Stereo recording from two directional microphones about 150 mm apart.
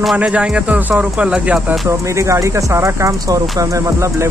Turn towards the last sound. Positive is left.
turn(degrees=-20)  # may be behind; listen again after turning